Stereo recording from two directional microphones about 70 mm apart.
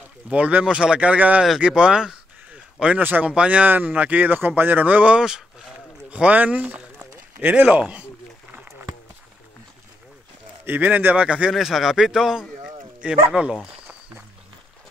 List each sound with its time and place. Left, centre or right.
0.3 s speech: right
1.6 s a sound: centre
3.0 s speech: right
3.3 s speech: centre
10.6 s speech: right
11.2 s speech: centre
11.5 s speech: centre